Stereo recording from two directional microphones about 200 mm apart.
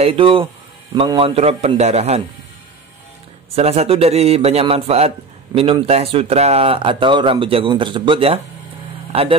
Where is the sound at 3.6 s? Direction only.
30° right (ahead or behind).